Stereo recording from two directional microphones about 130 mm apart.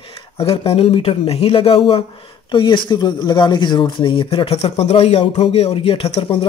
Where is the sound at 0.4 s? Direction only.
45° left (ahead or behind).